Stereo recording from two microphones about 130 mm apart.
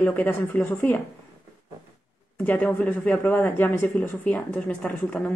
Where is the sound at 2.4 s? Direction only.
15° left (ahead or behind).